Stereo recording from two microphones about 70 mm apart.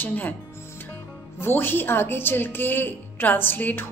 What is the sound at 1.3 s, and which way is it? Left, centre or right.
A woman's voice, left.